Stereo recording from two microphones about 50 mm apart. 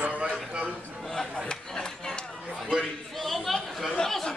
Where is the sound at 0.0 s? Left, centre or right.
Right.